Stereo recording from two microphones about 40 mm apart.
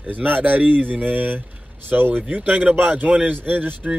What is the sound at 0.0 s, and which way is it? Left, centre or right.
Speech, right.